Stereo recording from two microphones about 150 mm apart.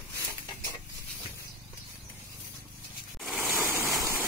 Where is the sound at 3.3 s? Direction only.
15° right (ahead or behind).